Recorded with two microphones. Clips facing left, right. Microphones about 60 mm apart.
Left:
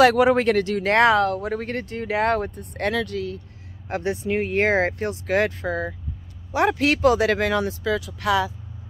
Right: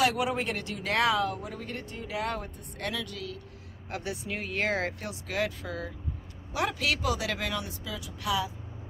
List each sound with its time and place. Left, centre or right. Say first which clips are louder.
0.0 s speech: left 11 dB; left
0.8 s speech: left 8 dB; left
3.9 s speech: left 11 dB; left